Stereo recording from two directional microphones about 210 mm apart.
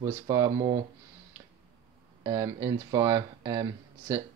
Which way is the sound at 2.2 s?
15° right (ahead or behind).